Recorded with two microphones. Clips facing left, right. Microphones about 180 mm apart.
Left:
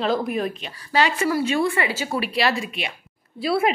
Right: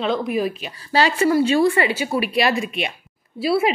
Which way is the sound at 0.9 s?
30° right (ahead or behind).